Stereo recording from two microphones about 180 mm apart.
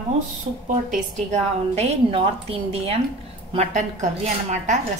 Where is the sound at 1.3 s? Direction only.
35° right (ahead or behind).